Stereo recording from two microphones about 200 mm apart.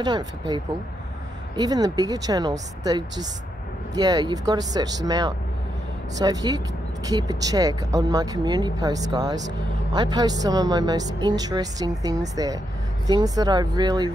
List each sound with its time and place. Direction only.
0.0 s speech: 20° right (ahead or behind)
1.6 s speech: 20° right (ahead or behind)